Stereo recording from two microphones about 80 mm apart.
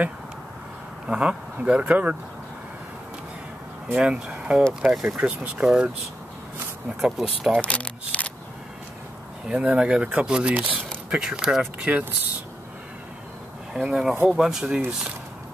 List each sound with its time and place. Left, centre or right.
1.0 s speech: centre
3.9 s speech: centre
7.0 s speech: centre
7.6 s a sound: centre
9.5 s speech: centre
13.7 s speech: centre